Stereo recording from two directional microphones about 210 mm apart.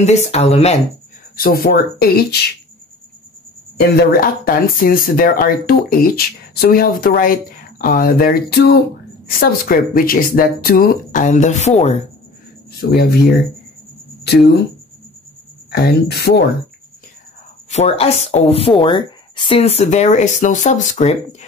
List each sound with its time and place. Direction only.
0.0 s a woman's voice: 30° left (ahead or behind)
1.3 s speech: 45° left (ahead or behind)
4.0 s a woman's voice: 45° left (ahead or behind)
12.9 s speech: 50° left (ahead or behind)
15.7 s speech: 50° left (ahead or behind)
17.6 s a woman's voice: 30° left (ahead or behind)